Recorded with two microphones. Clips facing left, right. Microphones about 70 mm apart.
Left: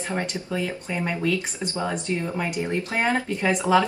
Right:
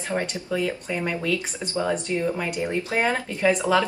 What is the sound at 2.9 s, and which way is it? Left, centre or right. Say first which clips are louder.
Speech: left 1 dB; left.